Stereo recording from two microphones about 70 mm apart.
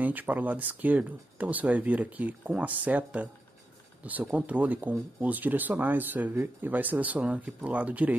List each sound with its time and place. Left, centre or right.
0.0 s speech: right